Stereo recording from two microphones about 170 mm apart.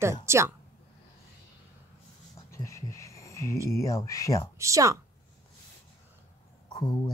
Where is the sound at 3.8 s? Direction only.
20° left (ahead or behind).